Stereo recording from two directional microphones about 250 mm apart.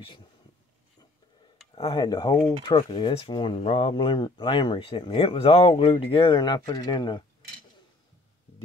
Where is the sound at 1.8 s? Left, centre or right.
Centre.